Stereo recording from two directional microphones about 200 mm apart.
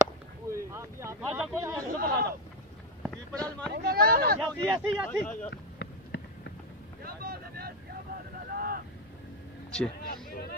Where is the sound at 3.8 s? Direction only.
50° right (ahead or behind).